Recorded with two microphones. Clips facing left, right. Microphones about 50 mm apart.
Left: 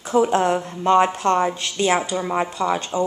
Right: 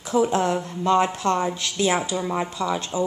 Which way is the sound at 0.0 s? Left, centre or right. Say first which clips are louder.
Left 3 dB; centre.